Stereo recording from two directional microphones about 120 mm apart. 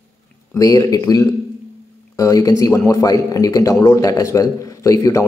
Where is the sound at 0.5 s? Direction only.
30° left (ahead or behind).